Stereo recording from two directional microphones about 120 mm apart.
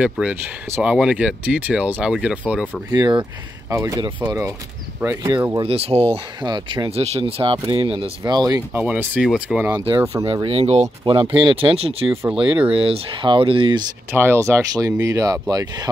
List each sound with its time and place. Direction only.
0.0 s speech: 10° right (ahead or behind)
2.9 s speech: 35° right (ahead or behind)
3.7 s speech: 25° right (ahead or behind)
5.6 s speech: 55° right (ahead or behind)
6.4 s speech: 35° right (ahead or behind)
6.9 s speech: 60° right (ahead or behind)
7.5 s speech: 40° right (ahead or behind)
8.2 s speech: 35° right (ahead or behind)
8.5 s speech: 15° right (ahead or behind)
9.8 s speech: 45° right (ahead or behind)
11.1 s speech: 45° right (ahead or behind)
14.1 s speech: 20° right (ahead or behind); by 15.9 s 35° right (ahead or behind)